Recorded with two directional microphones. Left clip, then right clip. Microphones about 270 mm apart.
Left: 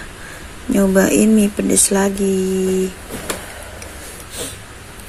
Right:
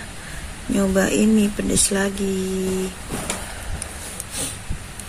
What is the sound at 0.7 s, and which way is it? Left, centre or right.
Speech, centre.